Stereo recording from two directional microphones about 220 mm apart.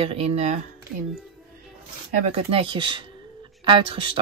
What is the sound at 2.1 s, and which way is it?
Speech, 30° right (ahead or behind).